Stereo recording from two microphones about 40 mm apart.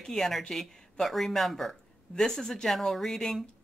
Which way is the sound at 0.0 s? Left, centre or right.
Centre.